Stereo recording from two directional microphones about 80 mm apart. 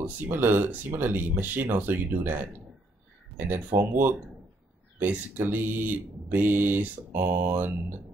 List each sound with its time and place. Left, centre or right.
0.0 s speech: right
3.3 s speech: right